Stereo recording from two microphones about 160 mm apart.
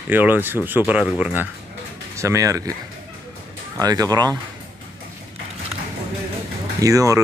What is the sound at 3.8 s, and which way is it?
Speech, 25° right (ahead or behind).